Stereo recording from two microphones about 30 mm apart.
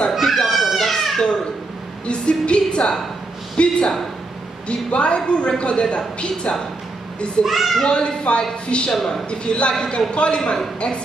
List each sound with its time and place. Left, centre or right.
0.1 s a sound: centre
0.5 s cat: centre
1.1 s cat: left
2.0 s a man's voice: left
3.6 s a man's voice: left
7.4 s a child's voice: centre
7.9 s a man's voice: left
8.9 s a man's voice: centre
9.3 s a man's voice: left